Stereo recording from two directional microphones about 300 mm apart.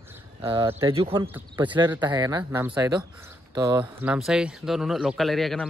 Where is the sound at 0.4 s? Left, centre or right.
Centre.